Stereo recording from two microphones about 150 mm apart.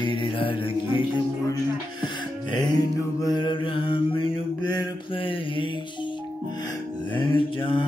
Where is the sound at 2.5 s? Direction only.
25° left (ahead or behind).